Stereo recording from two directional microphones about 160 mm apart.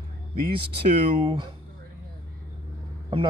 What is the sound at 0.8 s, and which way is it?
Speech, 40° right (ahead or behind).